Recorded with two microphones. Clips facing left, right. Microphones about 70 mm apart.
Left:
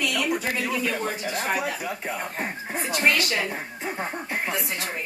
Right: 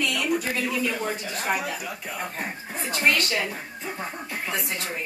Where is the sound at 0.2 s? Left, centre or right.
Left.